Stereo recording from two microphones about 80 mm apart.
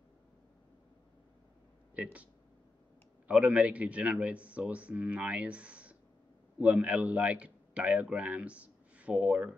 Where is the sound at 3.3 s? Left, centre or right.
Centre.